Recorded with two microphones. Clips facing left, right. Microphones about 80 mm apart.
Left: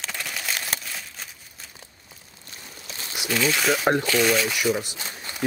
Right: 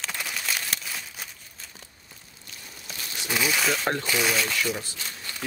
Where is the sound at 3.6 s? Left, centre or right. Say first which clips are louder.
Left 5 dB; centre.